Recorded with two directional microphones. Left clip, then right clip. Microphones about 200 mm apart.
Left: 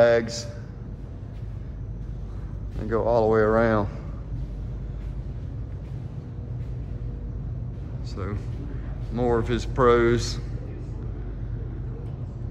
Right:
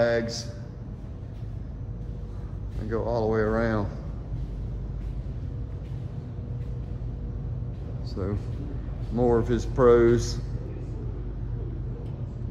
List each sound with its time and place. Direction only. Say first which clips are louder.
0.0 s a man's voice: left 5 dB; 5° right (ahead or behind)
2.8 s speech: left 6 dB; centre (ahead or behind)
9.1 s speech: right 1 dB; 15° right (ahead or behind)